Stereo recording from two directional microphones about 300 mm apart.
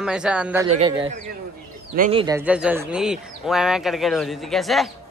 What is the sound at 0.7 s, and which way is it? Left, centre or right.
Speech, centre.